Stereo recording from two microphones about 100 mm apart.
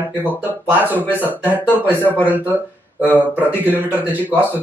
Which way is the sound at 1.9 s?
20° left (ahead or behind).